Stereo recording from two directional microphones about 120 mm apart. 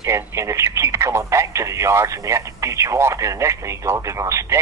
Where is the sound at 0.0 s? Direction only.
25° right (ahead or behind).